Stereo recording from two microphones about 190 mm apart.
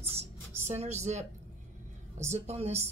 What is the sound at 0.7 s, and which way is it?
Speech, 35° right (ahead or behind).